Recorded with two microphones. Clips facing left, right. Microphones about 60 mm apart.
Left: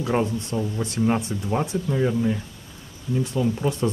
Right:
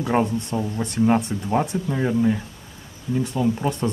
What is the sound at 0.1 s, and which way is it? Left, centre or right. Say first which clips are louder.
Speech: right 3 dB; centre.